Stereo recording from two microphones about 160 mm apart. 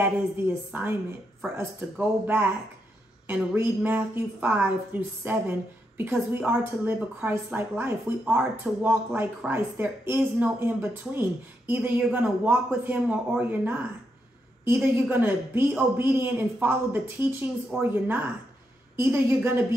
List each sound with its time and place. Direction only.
0.7 s a woman's voice: 10° right (ahead or behind)